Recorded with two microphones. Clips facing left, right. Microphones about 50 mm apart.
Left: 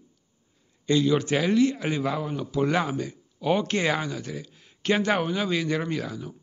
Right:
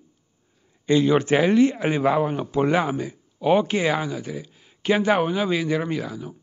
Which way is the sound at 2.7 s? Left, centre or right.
Centre.